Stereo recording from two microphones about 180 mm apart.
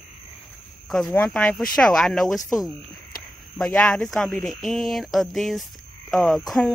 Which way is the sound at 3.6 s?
5° left (ahead or behind).